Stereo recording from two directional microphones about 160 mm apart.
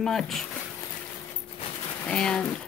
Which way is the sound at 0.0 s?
Centre (ahead or behind).